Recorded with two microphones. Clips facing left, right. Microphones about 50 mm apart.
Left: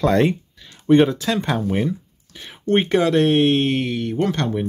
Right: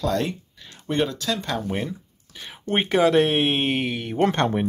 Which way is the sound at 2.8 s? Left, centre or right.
Centre.